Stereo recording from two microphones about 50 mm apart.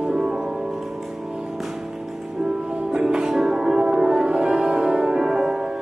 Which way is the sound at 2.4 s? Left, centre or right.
Centre.